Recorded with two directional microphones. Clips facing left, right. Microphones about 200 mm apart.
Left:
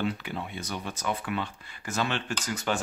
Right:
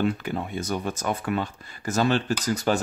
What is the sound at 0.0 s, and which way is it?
Speech, 45° right (ahead or behind).